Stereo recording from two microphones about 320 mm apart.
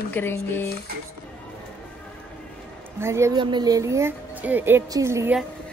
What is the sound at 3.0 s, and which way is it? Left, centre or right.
Speech, centre.